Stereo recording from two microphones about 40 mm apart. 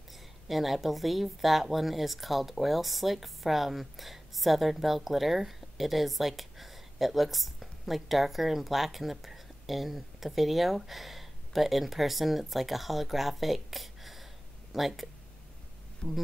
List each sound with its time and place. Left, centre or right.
0.5 s a woman's voice: centre
16.0 s speech: left